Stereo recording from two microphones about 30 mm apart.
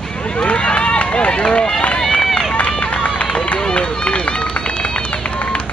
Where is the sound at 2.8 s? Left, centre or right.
Left.